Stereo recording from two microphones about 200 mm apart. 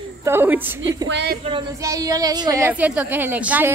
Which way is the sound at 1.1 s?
60° right (ahead or behind).